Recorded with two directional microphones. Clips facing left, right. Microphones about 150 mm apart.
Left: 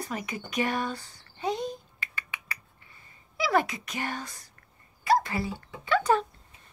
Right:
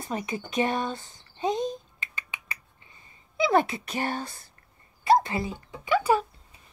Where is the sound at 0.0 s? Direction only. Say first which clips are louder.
Right 3 dB; 25° right (ahead or behind).